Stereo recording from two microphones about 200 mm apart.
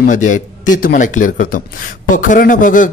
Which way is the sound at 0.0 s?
40° left (ahead or behind).